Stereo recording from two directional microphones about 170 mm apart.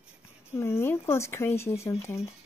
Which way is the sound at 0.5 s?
15° left (ahead or behind).